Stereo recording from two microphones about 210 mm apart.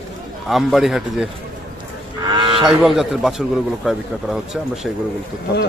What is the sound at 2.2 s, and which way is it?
Moo, 25° right (ahead or behind).